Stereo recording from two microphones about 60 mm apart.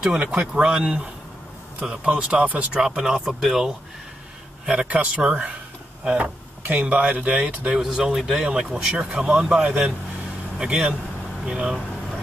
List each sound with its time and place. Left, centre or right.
0.0 s speech: centre
4.6 s speech: right
7.7 s speech: centre
8.9 s speech: centre